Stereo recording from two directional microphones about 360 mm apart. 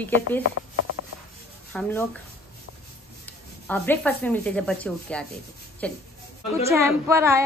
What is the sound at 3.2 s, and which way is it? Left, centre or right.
Speech, centre.